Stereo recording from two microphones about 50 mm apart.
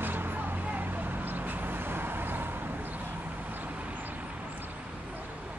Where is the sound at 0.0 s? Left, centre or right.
Right.